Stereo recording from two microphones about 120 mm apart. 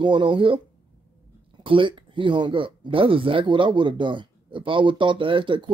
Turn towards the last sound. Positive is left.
turn(degrees=-45)  # may be behind; listen again after turning